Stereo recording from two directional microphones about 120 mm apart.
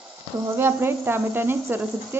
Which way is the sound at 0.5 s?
20° right (ahead or behind).